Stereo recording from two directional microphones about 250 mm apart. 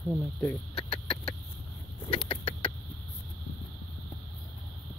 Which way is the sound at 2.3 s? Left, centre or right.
Centre.